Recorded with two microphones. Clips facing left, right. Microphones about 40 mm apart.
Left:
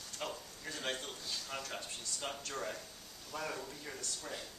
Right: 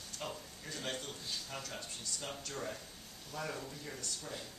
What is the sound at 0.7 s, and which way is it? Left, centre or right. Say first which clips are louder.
Speech: left 1 dB; centre.